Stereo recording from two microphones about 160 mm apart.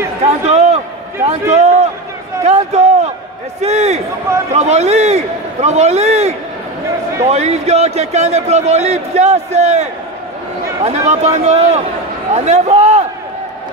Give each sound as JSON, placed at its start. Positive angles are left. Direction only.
{"t": 0.2, "sound": "a man's voice", "side_deg": -45}